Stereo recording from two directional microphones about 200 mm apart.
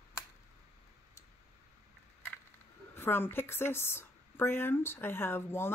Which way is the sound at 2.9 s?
10° left (ahead or behind).